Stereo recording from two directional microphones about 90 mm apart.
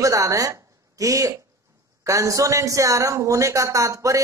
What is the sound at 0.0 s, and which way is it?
Speech, 40° right (ahead or behind).